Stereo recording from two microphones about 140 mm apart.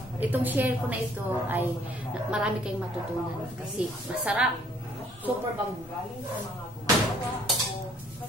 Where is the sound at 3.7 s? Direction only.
10° right (ahead or behind).